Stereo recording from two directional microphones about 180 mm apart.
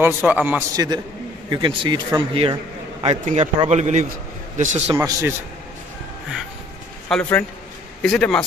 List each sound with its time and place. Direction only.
0.0 s a man's voice: 10° right (ahead or behind)
0.7 s a man's voice: 25° right (ahead or behind); by 4.9 s 40° right (ahead or behind)
4.9 s a man's voice: 15° right (ahead or behind)
7.1 s a man's voice: 10° left (ahead or behind)